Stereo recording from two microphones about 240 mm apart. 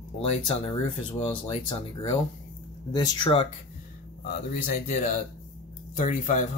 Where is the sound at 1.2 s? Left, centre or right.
Left.